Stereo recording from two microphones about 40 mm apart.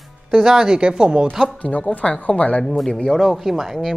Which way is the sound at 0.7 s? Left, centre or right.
Right.